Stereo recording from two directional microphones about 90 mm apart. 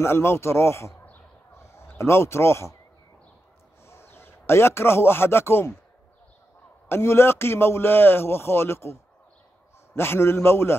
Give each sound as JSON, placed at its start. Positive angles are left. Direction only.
{"t": 0.0, "sound": "a man's voice", "side_deg": 25}
{"t": 1.6, "sound": "a sound", "side_deg": 30}
{"t": 1.9, "sound": "speech", "side_deg": 30}
{"t": 3.8, "sound": "speech", "side_deg": 30}
{"t": 6.9, "sound": "a man's voice", "side_deg": 30}
{"t": 9.9, "sound": "a man's voice", "side_deg": 25}